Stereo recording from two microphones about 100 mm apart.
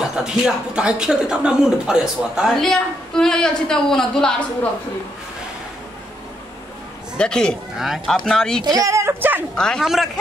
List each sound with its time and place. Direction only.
0.0 s speech: 5° right (ahead or behind)
2.6 s a woman's voice: 5° left (ahead or behind)
7.2 s speech: 10° left (ahead or behind)
7.7 s a woman's voice: 5° right (ahead or behind)
8.6 s speech: 35° right (ahead or behind)
9.6 s speech: 5° left (ahead or behind)